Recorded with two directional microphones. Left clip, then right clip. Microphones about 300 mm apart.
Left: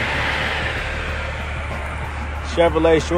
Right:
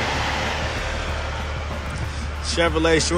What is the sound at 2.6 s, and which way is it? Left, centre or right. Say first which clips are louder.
Speech: left 4 dB; centre.